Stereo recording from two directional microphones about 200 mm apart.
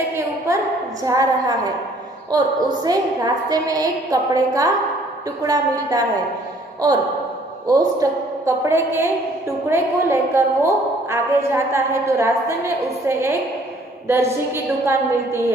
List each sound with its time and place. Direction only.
1.0 s a woman's voice: 15° right (ahead or behind)
7.6 s a woman's voice: 15° right (ahead or behind)